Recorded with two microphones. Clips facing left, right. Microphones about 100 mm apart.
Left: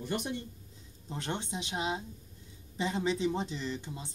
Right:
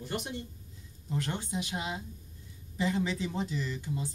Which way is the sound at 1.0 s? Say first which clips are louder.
Right 2 dB; 25° left (ahead or behind).